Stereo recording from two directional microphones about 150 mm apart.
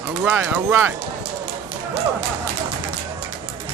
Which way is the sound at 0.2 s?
10° right (ahead or behind).